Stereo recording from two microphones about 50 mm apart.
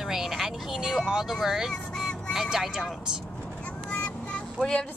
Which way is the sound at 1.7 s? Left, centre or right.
Centre.